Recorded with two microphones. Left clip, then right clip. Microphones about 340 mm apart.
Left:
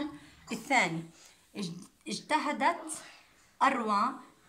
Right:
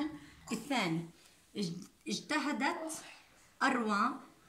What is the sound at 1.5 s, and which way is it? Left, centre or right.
A woman's voice, centre.